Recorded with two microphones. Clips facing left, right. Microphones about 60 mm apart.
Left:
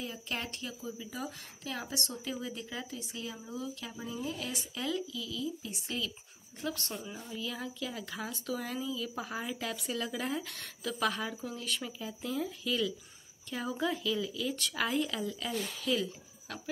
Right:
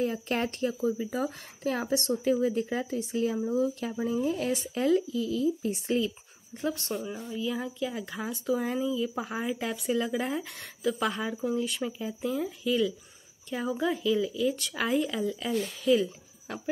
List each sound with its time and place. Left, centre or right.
0.0 s speech: right
5.9 s a woman's voice: right